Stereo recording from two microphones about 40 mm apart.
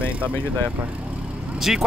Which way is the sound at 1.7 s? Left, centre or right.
Centre.